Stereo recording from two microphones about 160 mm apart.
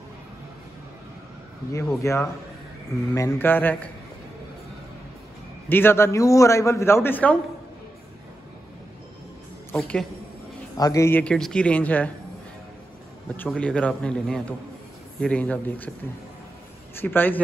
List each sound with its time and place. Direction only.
2.0 s a man's voice: 15° left (ahead or behind)
5.7 s a man's voice: 15° left (ahead or behind)
9.8 s a man's voice: 5° left (ahead or behind)
10.8 s a man's voice: 20° left (ahead or behind)
13.4 s a man's voice: 5° left (ahead or behind)
16.9 s a man's voice: 10° left (ahead or behind)